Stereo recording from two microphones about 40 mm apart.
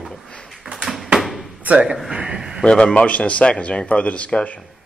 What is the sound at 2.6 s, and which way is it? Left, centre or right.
Speech, left.